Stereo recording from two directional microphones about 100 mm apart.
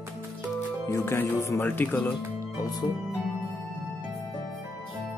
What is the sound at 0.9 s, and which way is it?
Speech, 25° left (ahead or behind).